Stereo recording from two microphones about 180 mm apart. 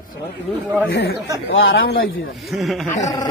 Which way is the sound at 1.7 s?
55° left (ahead or behind).